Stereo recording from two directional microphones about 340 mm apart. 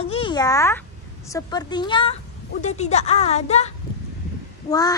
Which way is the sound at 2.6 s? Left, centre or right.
Centre.